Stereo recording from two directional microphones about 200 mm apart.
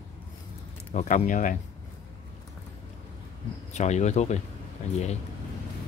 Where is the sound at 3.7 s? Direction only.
35° left (ahead or behind).